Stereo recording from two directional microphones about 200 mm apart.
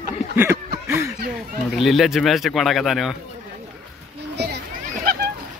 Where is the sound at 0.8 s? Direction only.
15° right (ahead or behind).